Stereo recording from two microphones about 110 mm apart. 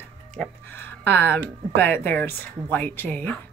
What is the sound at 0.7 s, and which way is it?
Speech, 20° left (ahead or behind).